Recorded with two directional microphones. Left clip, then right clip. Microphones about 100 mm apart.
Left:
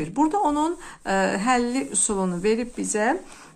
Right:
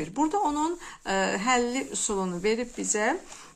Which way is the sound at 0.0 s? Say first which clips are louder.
Left 4 dB; 35° left (ahead or behind).